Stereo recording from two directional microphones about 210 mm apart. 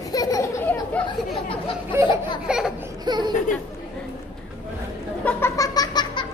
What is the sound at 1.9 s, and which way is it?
Laughter, 10° right (ahead or behind).